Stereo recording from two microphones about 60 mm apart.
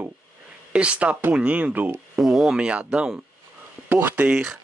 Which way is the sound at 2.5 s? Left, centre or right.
Centre.